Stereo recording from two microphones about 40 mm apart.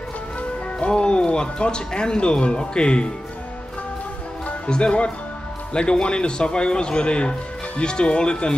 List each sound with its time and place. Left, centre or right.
0.4 s speech: left
4.5 s speech: left